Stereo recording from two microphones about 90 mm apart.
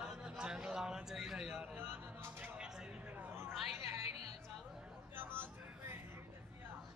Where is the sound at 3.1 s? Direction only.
25° right (ahead or behind).